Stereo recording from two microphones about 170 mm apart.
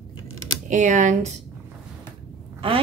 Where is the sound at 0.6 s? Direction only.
45° right (ahead or behind).